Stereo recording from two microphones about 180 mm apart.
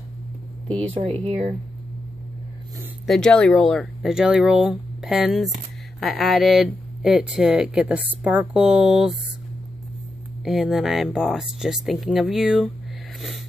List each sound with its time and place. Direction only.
1.2 s speech: 35° right (ahead or behind)
3.1 s speech: 5° left (ahead or behind)
10.4 s speech: centre (ahead or behind)